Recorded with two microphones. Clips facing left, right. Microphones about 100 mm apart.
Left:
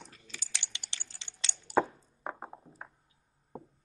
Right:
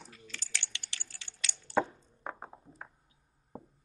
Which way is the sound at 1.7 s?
10° left (ahead or behind).